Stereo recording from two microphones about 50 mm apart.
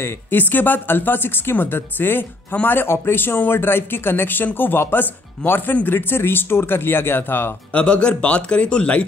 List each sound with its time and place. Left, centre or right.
0.3 s speech: left
4.6 s chopping: left
5.9 s speech: left
7.7 s speech: left